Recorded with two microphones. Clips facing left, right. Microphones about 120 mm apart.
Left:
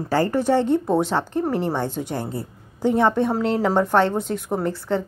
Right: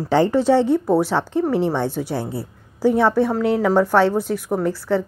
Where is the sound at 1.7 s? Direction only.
15° left (ahead or behind).